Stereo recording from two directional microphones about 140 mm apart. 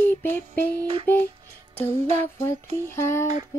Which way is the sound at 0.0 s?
15° left (ahead or behind).